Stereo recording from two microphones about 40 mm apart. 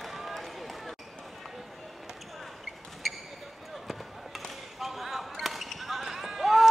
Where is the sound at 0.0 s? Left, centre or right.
Centre.